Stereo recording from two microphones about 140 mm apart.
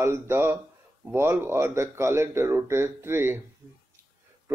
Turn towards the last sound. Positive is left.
turn(degrees=-15)  # may be behind; listen again after turning